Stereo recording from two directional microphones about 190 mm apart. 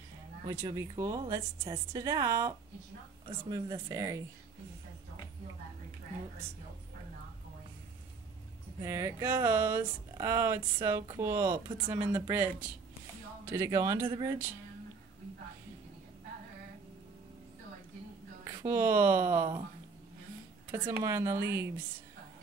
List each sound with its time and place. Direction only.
0.5 s a woman's voice: 15° right (ahead or behind)
8.8 s a woman's voice: 15° right (ahead or behind)
18.4 s speech: 15° right (ahead or behind)
20.7 s speech: 10° right (ahead or behind)